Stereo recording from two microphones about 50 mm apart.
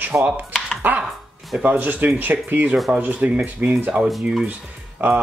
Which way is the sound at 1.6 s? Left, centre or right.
Right.